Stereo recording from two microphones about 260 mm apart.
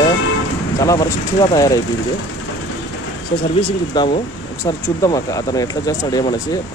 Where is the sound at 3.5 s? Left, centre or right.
Centre.